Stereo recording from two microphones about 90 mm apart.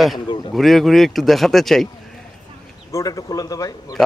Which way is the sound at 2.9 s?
40° left (ahead or behind).